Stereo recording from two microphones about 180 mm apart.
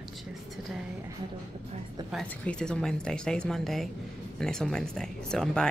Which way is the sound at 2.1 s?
5° left (ahead or behind).